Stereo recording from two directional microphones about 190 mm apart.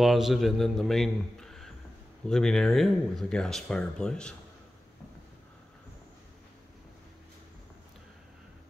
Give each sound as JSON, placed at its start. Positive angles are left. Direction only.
{"t": 0.0, "sound": "speech", "side_deg": 0}